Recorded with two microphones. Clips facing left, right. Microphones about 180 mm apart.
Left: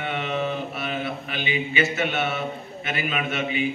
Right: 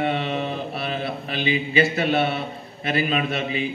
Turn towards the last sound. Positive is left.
turn(degrees=-35)  # may be behind; listen again after turning